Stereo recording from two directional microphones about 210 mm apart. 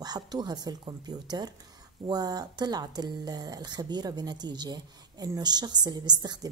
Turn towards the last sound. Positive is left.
turn(degrees=-20)  # may be behind; listen again after turning